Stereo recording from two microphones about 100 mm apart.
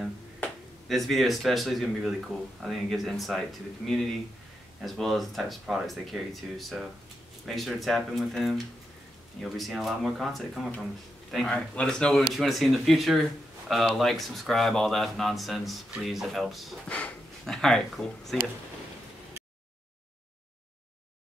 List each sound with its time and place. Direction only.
0.8 s speech: centre (ahead or behind)